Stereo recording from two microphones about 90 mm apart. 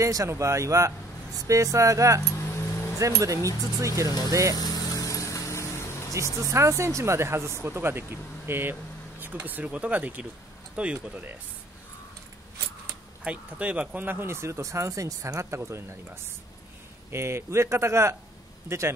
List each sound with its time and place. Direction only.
0.0 s speech: 35° right (ahead or behind)
2.3 s a sound: 30° left (ahead or behind)
3.0 s speech: 35° right (ahead or behind)
4.6 s vehicle: 45° left (ahead or behind)
6.5 s speech: 30° right (ahead or behind); by 11.3 s 15° right (ahead or behind)
13.2 s speech: 15° right (ahead or behind); by 15.8 s 35° right (ahead or behind)
17.1 s speech: 30° right (ahead or behind)